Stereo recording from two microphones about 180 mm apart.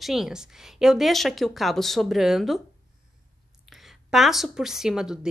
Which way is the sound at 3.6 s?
Centre (ahead or behind).